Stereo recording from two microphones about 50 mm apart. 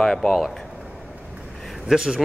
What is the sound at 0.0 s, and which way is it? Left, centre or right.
Speech, centre.